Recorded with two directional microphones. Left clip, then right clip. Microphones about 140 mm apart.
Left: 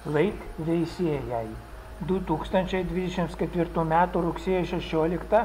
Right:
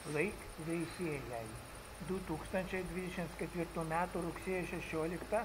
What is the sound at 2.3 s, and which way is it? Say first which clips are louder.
Speech: left 14 dB; 15° right (ahead or behind).